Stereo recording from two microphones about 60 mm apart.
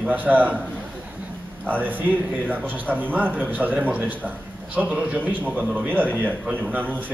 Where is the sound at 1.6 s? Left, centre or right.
Right.